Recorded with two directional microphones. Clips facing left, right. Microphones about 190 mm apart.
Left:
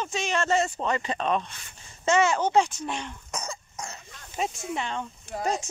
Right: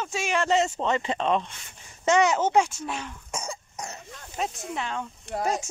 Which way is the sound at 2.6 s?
5° right (ahead or behind).